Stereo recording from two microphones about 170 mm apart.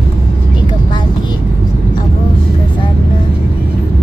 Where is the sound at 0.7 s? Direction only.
25° left (ahead or behind).